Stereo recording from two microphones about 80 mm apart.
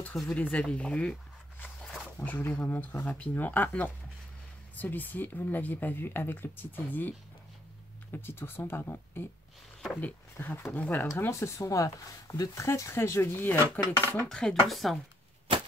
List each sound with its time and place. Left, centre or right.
0.1 s speech: centre
1.8 s a sound: centre
2.5 s speech: centre
11.1 s speech: left
14.3 s speech: centre